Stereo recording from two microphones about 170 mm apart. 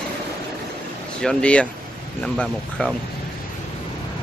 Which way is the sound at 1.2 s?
5° left (ahead or behind).